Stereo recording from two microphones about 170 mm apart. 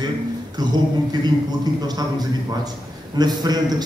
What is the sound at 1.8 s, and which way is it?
A man's voice, 25° right (ahead or behind).